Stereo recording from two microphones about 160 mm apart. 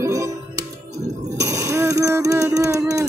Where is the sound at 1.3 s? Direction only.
20° right (ahead or behind).